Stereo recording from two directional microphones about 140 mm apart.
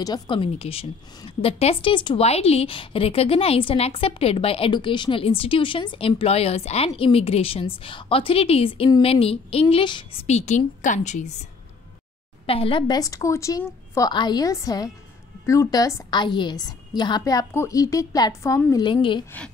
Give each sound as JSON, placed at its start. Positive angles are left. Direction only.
{"t": 0.0, "sound": "a woman's voice", "side_deg": 35}
{"t": 10.2, "sound": "a woman's voice", "side_deg": 50}
{"t": 12.4, "sound": "a woman's voice", "side_deg": 40}
{"t": 18.9, "sound": "a woman's voice", "side_deg": 35}